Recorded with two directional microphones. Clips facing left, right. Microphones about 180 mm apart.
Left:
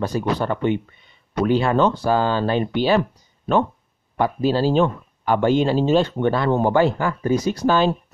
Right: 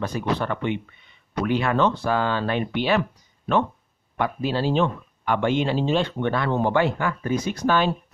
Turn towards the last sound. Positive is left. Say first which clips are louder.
# left 4 dB
turn(degrees=35)  # may be behind; listen again after turning